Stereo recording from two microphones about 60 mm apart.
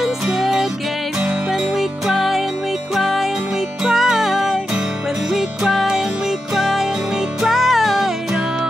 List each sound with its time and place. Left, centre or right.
0.0 s music: centre